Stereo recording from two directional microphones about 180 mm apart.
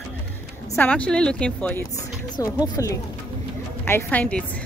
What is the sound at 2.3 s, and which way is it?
Speech, 20° left (ahead or behind).